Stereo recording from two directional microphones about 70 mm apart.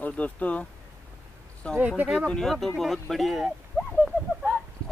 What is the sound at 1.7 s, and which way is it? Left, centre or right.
Speech, right.